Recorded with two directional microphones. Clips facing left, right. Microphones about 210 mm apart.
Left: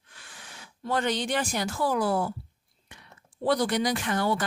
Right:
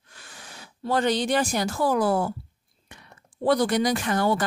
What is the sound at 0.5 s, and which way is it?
Speech, 35° right (ahead or behind).